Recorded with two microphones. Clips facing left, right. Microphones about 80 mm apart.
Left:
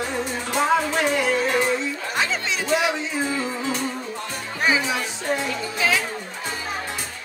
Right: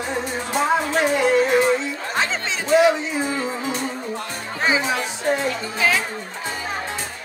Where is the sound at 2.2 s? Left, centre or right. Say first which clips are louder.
Even; right.